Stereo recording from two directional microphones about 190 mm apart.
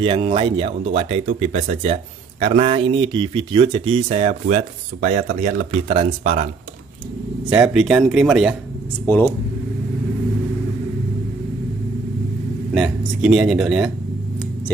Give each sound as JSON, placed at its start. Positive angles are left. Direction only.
{"t": 0.0, "sound": "speech", "side_deg": -30}
{"t": 7.4, "sound": "speech", "side_deg": -5}
{"t": 9.0, "sound": "speech", "side_deg": 10}
{"t": 12.7, "sound": "speech", "side_deg": -5}